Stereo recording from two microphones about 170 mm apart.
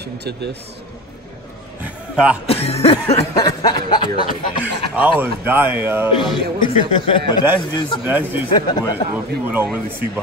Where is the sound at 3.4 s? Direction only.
25° left (ahead or behind).